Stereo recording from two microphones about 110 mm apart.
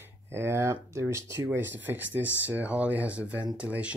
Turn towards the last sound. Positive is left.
turn(degrees=-10)  # may be behind; listen again after turning